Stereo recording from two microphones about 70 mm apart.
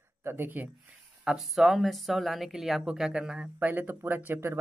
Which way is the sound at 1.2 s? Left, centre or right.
Centre.